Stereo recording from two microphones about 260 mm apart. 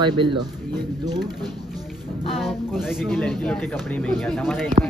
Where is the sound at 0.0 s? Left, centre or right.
Centre.